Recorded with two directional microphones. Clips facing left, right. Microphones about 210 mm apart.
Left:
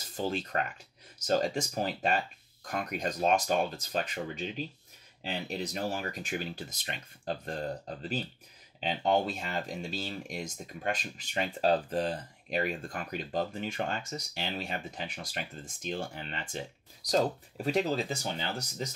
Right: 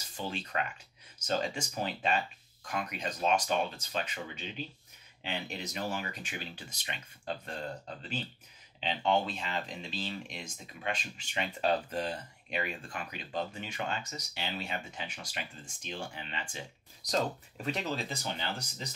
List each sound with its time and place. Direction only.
0.0 s speech: 40° left (ahead or behind)